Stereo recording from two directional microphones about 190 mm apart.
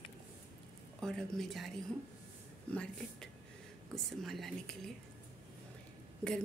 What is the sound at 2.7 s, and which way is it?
A woman's voice, 5° left (ahead or behind).